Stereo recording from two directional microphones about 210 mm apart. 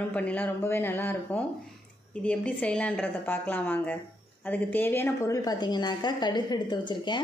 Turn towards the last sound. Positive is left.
turn(degrees=20)  # may be behind; listen again after turning